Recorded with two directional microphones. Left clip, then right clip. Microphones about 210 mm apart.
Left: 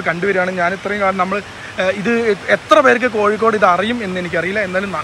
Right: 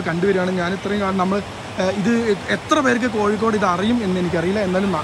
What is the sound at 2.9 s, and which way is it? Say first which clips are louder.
Speech: left 5 dB; 10° right (ahead or behind).